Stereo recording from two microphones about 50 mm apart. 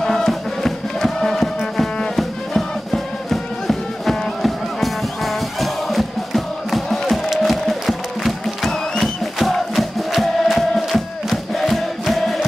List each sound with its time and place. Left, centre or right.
0.0 s music: centre